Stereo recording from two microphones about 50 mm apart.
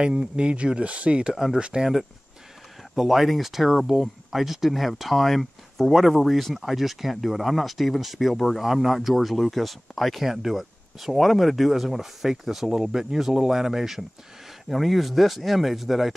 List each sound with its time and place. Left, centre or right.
0.0 s speech: centre
1.3 s speech: centre
1.6 s speech: centre
3.0 s speech: centre